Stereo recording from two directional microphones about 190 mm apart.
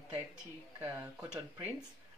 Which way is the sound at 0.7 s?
15° right (ahead or behind).